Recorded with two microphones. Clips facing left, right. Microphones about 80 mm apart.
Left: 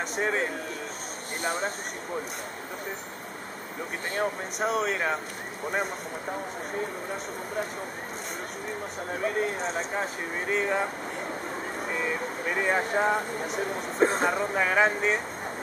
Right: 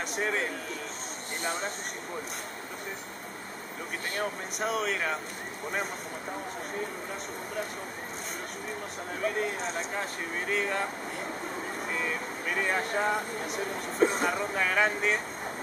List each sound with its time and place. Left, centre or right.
0.1 s speech: centre
4.2 s speech: centre
9.4 s speech: centre
13.9 s speech: left
14.2 s speech: centre